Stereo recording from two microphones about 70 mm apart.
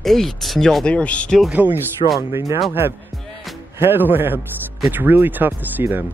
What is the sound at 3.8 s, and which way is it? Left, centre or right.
Speech, right.